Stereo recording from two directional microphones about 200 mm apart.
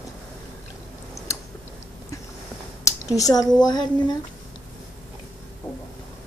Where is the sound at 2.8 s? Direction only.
15° left (ahead or behind).